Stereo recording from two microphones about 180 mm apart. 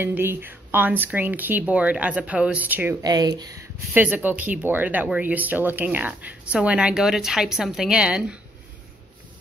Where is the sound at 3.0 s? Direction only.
20° right (ahead or behind).